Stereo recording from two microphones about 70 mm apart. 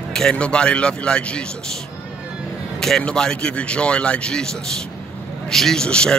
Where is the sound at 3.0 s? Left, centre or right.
Centre.